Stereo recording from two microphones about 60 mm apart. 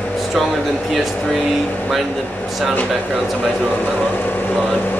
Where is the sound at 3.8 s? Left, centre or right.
Left.